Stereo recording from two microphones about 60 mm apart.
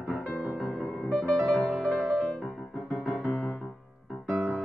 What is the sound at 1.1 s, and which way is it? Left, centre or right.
Music, centre.